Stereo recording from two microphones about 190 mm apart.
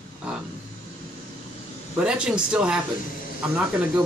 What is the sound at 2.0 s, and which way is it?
Speech, 5° right (ahead or behind).